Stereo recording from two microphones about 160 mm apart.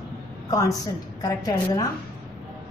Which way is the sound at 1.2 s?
25° left (ahead or behind).